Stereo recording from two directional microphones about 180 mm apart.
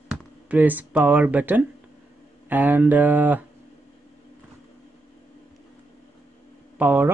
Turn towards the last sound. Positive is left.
turn(degrees=-10)  # may be behind; listen again after turning